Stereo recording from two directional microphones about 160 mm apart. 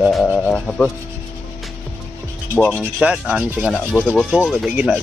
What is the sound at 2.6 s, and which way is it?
Speech, 5° left (ahead or behind).